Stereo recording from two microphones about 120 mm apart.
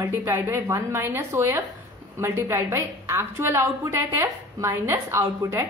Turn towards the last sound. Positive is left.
turn(degrees=-25)  # may be behind; listen again after turning